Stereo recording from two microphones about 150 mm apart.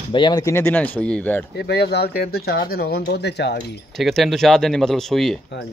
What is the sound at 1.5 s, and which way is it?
Speech, 90° left.